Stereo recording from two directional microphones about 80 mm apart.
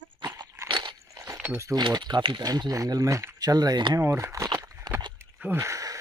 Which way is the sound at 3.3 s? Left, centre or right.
Right.